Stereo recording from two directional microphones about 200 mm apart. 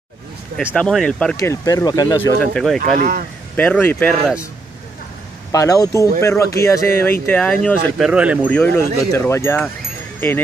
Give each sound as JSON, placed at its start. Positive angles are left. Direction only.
{"t": 0.7, "sound": "speech", "side_deg": 5}
{"t": 1.3, "sound": "speech", "side_deg": 15}
{"t": 2.4, "sound": "speech", "side_deg": 0}
{"t": 2.8, "sound": "speech", "side_deg": -45}
{"t": 3.5, "sound": "speech", "side_deg": 10}
{"t": 5.5, "sound": "speech", "side_deg": 15}
{"t": 7.6, "sound": "speech", "side_deg": -5}
{"t": 8.5, "sound": "speech", "side_deg": 10}